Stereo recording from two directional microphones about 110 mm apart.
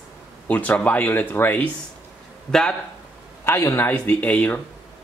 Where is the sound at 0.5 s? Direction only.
15° left (ahead or behind).